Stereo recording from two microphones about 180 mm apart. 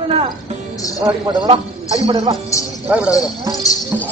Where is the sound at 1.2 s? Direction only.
25° right (ahead or behind).